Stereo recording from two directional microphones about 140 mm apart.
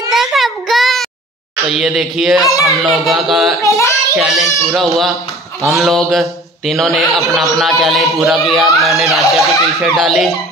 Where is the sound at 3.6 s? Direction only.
20° left (ahead or behind).